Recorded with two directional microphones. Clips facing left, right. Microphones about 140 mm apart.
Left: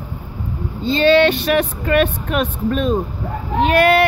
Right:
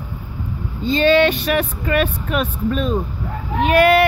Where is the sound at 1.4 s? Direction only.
40° left (ahead or behind).